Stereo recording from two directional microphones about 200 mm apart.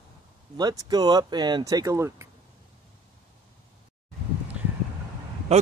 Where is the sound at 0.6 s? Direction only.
20° right (ahead or behind).